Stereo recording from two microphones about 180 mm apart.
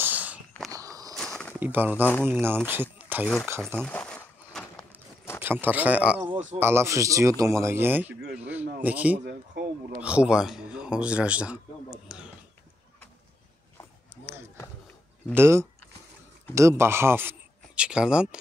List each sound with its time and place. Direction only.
0.0 s walk: 10° right (ahead or behind)
0.7 s walk: 20° right (ahead or behind)
1.1 s walk: centre (ahead or behind)
1.6 s a man's voice: 10° right (ahead or behind)
3.8 s a sound: 5° left (ahead or behind)
5.4 s a man's voice: 10° right (ahead or behind)
9.2 s speech: 60° right (ahead or behind)
9.9 s a man's voice: 5° right (ahead or behind)
15.3 s a man's voice: 15° right (ahead or behind)